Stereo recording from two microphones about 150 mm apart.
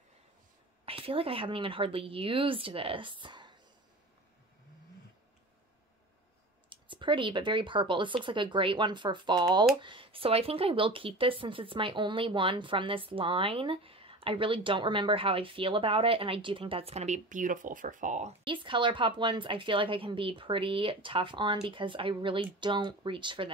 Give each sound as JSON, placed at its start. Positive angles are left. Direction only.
{"t": 0.8, "sound": "speech", "side_deg": -40}
{"t": 6.7, "sound": "speech", "side_deg": -35}
{"t": 18.4, "sound": "speech", "side_deg": -35}